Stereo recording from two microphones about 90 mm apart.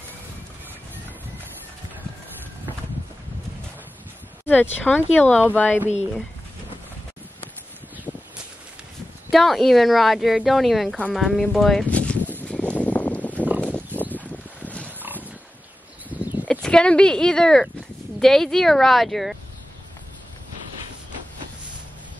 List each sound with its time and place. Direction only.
4.5 s speech: 20° left (ahead or behind)
9.3 s speech: centre (ahead or behind)
11.9 s a sound: 15° left (ahead or behind)
16.4 s speech: 10° left (ahead or behind)